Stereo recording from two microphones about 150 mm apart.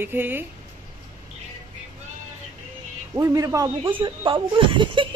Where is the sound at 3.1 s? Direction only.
20° right (ahead or behind).